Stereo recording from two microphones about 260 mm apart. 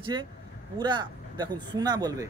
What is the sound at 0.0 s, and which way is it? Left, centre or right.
Speech, centre.